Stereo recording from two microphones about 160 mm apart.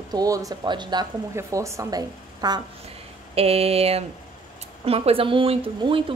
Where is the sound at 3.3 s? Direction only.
40° right (ahead or behind).